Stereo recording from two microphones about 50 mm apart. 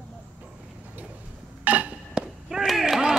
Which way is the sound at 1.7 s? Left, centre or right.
Right.